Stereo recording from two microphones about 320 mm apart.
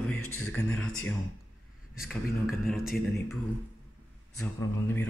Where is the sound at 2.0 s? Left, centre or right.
Centre.